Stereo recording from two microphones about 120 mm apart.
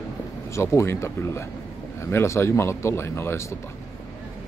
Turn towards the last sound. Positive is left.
turn(degrees=20)  # may be behind; listen again after turning